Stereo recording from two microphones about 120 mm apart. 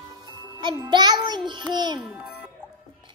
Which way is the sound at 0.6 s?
40° right (ahead or behind).